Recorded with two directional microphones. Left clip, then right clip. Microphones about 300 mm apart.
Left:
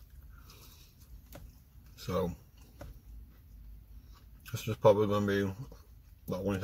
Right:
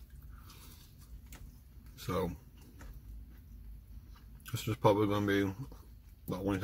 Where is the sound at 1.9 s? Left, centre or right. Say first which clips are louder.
Left 2 dB; centre.